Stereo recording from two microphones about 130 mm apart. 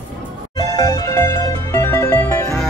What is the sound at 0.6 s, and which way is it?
Music, 25° left (ahead or behind).